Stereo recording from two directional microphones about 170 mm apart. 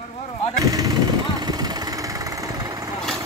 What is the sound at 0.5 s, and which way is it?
Vehicle, 20° right (ahead or behind).